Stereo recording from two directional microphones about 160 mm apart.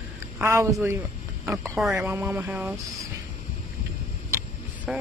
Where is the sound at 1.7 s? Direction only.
Centre (ahead or behind).